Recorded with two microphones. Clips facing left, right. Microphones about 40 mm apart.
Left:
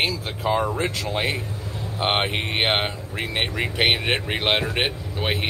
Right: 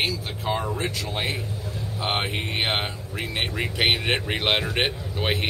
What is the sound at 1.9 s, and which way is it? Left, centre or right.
Speech, left.